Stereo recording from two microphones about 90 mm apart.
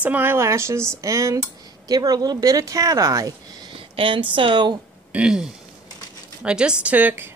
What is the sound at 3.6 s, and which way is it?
Speech, 80° right.